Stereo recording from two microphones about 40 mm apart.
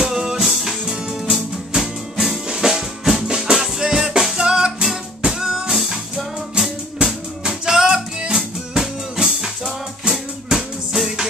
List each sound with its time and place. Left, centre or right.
0.0 s music: centre
2.1 s music: centre
2.4 s music: centre